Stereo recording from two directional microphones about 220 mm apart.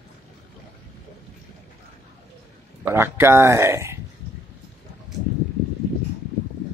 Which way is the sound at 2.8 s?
10° right (ahead or behind).